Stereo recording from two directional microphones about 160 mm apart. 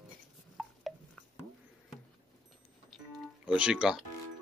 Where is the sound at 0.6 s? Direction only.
Centre (ahead or behind).